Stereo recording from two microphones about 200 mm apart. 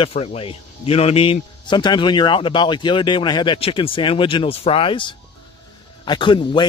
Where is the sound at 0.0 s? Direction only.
30° left (ahead or behind).